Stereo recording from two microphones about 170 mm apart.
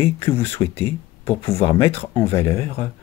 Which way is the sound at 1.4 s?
35° left (ahead or behind).